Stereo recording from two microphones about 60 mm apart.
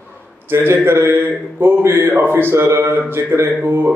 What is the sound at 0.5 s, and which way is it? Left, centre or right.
A man's voice, right.